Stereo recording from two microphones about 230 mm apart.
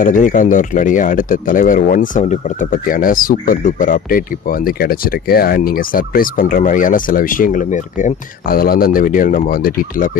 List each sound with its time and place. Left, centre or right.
0.0 s speech: left